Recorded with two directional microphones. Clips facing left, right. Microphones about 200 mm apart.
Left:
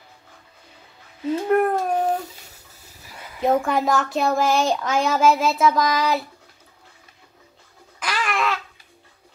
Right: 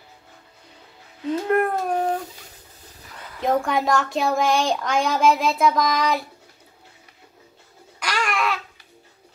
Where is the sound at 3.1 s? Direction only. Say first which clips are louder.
Left 2 dB; 10° left (ahead or behind).